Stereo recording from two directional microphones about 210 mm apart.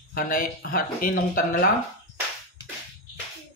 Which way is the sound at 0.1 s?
40° left (ahead or behind).